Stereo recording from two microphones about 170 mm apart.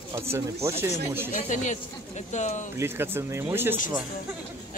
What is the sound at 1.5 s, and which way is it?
A man's voice, 45° left (ahead or behind).